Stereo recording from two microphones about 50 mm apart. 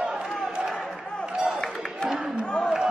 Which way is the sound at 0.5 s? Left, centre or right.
Centre.